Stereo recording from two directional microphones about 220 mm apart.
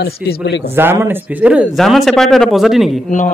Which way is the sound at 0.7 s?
10° right (ahead or behind).